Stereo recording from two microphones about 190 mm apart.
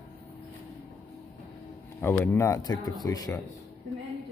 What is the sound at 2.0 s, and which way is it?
Speech, 10° left (ahead or behind).